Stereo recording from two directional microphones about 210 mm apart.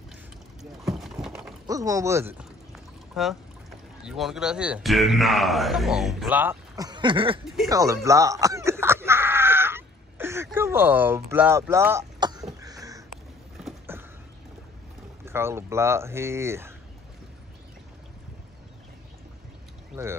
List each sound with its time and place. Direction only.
0.9 s rowboat: centre (ahead or behind)
1.7 s speech: 15° right (ahead or behind)
2.7 s pour: centre (ahead or behind)
4.0 s speech: centre (ahead or behind); by 7.3 s 25° right (ahead or behind)
7.7 s snicker: 15° right (ahead or behind)
12.5 s a sound: 15° right (ahead or behind)
15.2 s speech: 10° right (ahead or behind)